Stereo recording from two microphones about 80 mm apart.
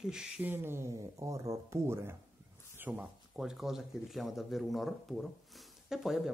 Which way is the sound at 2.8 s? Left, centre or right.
Centre.